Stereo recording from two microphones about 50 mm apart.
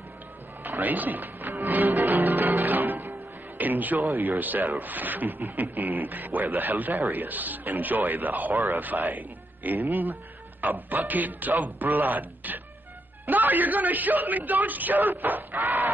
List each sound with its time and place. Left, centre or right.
0.7 s speech: right
1.6 s music: right
4.2 s speech: right
15.6 s a sound: right